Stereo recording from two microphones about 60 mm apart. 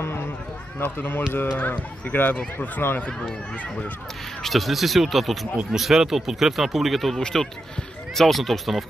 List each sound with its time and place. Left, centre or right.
0.0 s a sound: left
0.7 s speech: left
3.0 s speech: centre
4.4 s speech: centre